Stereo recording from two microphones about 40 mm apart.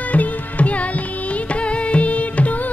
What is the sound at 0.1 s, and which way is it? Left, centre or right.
Music, left.